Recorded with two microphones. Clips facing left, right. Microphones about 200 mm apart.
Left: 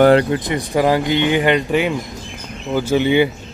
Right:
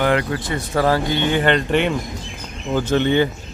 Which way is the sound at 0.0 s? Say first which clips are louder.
Left 7 dB; 35° left (ahead or behind).